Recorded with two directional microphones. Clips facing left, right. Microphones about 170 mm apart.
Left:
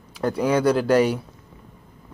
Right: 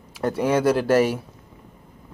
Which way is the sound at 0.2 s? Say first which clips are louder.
Even; 30° right (ahead or behind).